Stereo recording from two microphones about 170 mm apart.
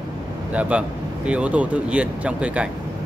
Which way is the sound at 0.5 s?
10° right (ahead or behind).